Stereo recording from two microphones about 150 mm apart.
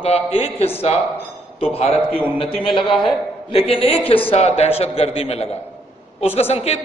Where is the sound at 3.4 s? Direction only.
40° left (ahead or behind).